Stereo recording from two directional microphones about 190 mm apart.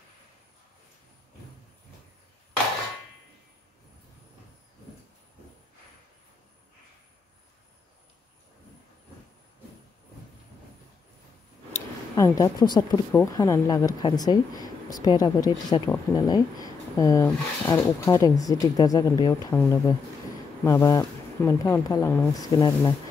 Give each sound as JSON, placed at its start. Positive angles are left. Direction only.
{"t": 11.7, "sound": "speech", "side_deg": 15}
{"t": 19.5, "sound": "speech", "side_deg": 10}